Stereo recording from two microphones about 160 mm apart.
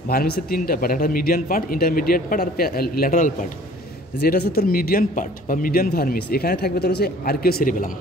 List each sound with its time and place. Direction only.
0.1 s a man's voice: 70° left (ahead or behind)
4.2 s speech: 70° left (ahead or behind)